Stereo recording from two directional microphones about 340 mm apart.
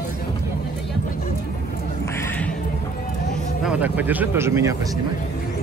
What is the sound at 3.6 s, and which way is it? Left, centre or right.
Speech, centre.